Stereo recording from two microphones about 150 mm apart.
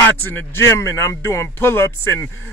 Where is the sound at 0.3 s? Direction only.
15° left (ahead or behind).